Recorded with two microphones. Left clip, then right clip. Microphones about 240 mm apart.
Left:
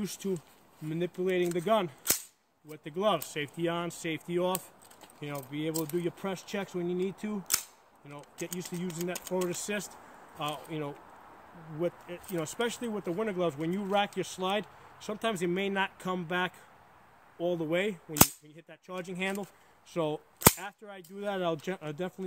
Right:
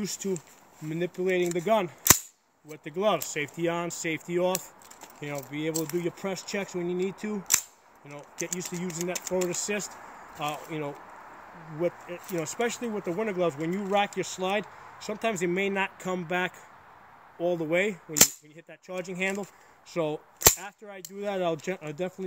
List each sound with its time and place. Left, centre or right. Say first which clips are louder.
0.0 s speech: right 3 dB; centre